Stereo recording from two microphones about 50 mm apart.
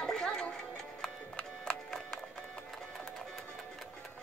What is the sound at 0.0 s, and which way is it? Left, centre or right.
Music, centre.